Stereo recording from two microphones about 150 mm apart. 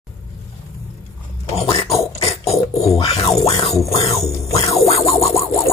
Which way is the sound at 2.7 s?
Centre (ahead or behind).